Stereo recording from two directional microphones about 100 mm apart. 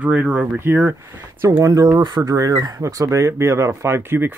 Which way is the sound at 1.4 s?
30° right (ahead or behind).